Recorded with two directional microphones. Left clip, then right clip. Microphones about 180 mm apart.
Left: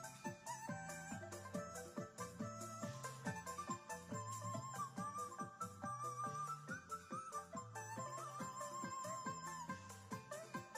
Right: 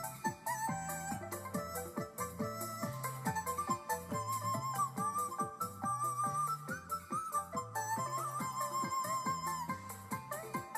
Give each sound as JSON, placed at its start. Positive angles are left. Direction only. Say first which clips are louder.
{"t": 0.0, "sound": "music", "louder": "right 12 dB", "side_deg": -30}